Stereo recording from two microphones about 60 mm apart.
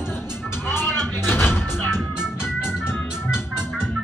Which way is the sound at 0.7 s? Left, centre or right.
Left.